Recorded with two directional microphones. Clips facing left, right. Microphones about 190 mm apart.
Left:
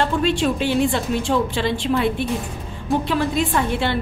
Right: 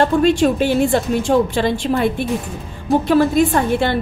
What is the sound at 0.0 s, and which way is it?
A woman's voice, 45° right (ahead or behind).